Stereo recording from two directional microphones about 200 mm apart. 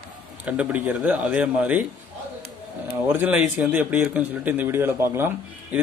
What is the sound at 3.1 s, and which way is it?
Speech, 10° right (ahead or behind).